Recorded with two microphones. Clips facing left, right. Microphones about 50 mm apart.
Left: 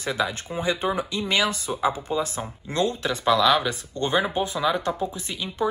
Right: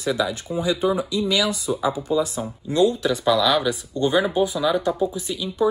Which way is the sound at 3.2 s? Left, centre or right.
Left.